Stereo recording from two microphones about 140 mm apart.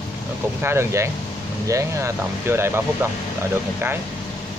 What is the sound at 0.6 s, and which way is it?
Speech, 20° right (ahead or behind).